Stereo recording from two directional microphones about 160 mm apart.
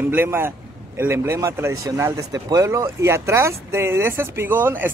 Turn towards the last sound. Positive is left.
turn(degrees=-15)  # may be behind; listen again after turning